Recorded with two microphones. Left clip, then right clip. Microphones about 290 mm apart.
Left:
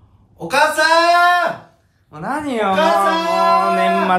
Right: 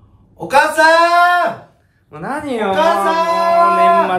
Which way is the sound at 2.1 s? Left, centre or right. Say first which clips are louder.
Right 1 dB; left.